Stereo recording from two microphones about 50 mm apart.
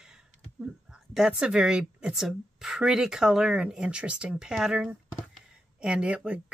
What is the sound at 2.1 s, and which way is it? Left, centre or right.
Speech, centre.